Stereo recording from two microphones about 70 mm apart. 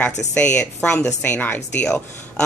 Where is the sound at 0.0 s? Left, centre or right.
Centre.